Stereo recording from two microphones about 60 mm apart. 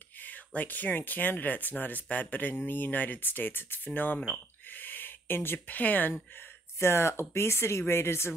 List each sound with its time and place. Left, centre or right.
0.2 s speech: left
4.6 s a sound: left
5.7 s speech: left
6.8 s speech: left